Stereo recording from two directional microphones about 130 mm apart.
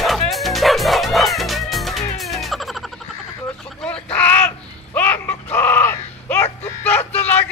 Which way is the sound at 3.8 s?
10° left (ahead or behind).